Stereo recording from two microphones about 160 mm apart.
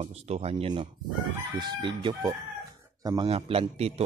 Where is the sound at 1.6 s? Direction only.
25° right (ahead or behind).